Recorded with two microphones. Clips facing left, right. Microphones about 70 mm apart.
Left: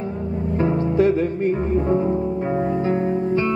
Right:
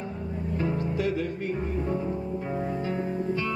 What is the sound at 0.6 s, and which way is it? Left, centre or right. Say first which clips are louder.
Music: left 10 dB; left.